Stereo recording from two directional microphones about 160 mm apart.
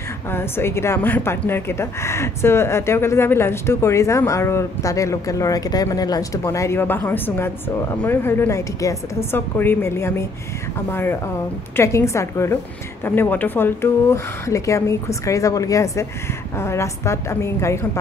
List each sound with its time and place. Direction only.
0.3 s a woman's voice: 15° left (ahead or behind)